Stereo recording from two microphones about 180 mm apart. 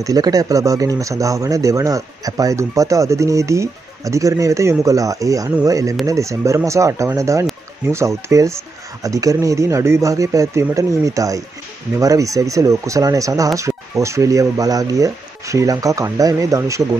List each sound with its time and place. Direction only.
0.0 s speech: 20° right (ahead or behind)